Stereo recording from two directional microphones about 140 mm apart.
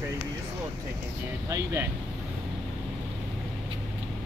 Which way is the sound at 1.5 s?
20° right (ahead or behind).